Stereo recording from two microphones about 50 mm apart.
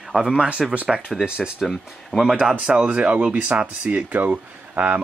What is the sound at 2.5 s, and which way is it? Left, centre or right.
Speech, right.